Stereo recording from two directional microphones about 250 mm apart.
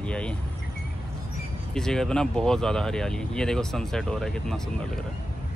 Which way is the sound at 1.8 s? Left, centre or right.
Centre.